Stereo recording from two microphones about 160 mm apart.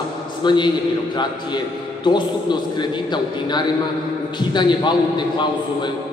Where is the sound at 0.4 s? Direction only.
30° left (ahead or behind).